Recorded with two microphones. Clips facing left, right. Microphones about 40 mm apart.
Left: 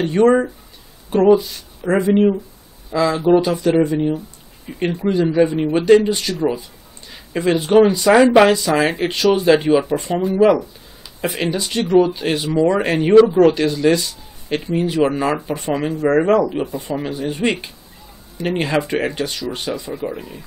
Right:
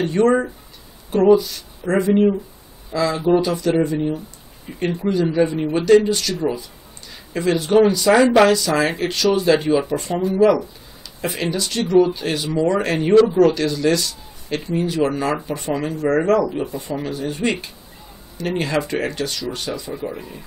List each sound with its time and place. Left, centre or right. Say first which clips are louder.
0.0 s speech: left 3 dB; centre